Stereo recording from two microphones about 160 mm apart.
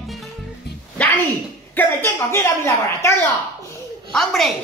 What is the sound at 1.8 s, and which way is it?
A woman's voice, 15° left (ahead or behind).